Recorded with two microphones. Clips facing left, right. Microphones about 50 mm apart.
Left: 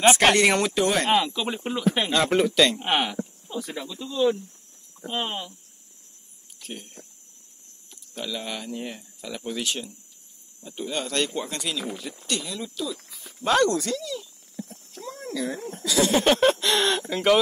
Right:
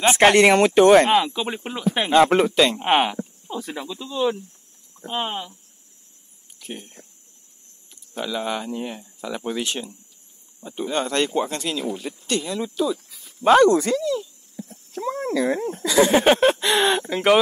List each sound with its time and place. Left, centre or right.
0.2 s speech: right
1.1 s speech: centre
2.0 s speech: right
3.7 s speech: right
5.2 s speech: centre
6.6 s speech: right
8.1 s speech: right
14.9 s speech: right
15.8 s speech: right
16.3 s speech: centre